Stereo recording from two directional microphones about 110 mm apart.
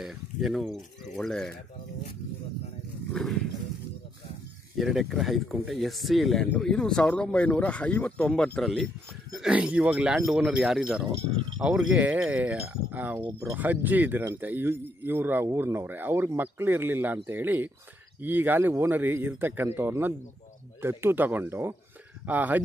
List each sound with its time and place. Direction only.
0.0 s speech: 5° right (ahead or behind)
3.1 s speech: 5° left (ahead or behind)
4.7 s speech: centre (ahead or behind)
9.4 s a man's voice: 10° right (ahead or behind)